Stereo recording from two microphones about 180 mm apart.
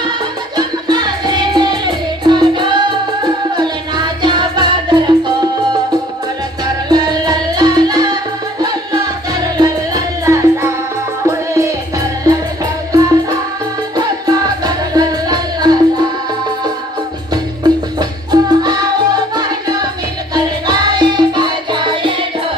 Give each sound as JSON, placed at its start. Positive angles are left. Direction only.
{"t": 0.6, "sound": "music", "side_deg": -25}
{"t": 6.6, "sound": "music", "side_deg": -25}
{"t": 12.9, "sound": "music", "side_deg": -20}
{"t": 14.6, "sound": "music", "side_deg": -20}
{"t": 17.3, "sound": "music", "side_deg": -20}